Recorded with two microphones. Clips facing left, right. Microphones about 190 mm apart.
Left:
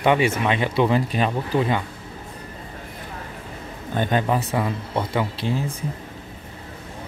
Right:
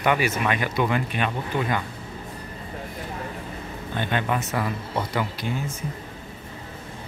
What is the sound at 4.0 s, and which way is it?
A man's voice, 35° left (ahead or behind).